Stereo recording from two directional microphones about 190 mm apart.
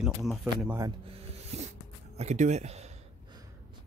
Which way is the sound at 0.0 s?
Centre (ahead or behind).